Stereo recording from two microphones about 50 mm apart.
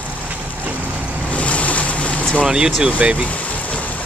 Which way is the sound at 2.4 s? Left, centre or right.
Centre.